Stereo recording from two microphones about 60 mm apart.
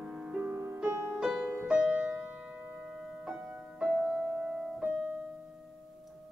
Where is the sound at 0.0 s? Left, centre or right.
Centre.